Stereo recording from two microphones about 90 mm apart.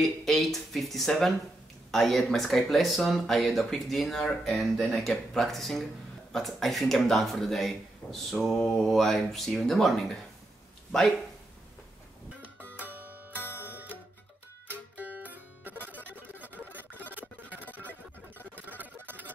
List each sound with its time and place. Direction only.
0.0 s speech: centre (ahead or behind)
12.7 s music: 20° right (ahead or behind)
13.4 s music: 25° left (ahead or behind)
13.7 s music: 20° right (ahead or behind)
16.3 s a sound: 20° right (ahead or behind)
19.0 s a sound: 20° right (ahead or behind)